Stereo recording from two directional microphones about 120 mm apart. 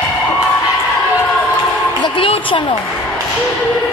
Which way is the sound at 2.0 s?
45° left (ahead or behind).